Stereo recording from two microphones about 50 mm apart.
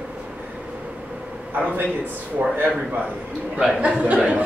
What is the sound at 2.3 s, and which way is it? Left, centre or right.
Speech, right.